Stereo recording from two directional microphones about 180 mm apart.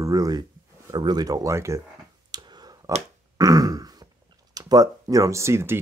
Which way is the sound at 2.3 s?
25° right (ahead or behind).